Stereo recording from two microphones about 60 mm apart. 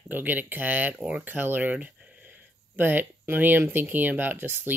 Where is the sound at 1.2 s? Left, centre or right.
Right.